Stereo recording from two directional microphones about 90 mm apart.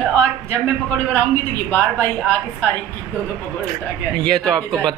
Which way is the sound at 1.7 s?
20° left (ahead or behind).